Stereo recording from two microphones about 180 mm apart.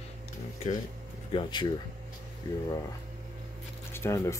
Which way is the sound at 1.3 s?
25° left (ahead or behind).